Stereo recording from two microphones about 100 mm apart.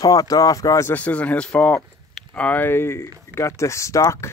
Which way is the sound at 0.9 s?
15° left (ahead or behind).